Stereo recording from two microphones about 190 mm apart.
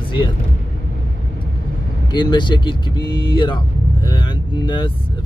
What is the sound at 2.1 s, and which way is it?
Speech, 25° left (ahead or behind).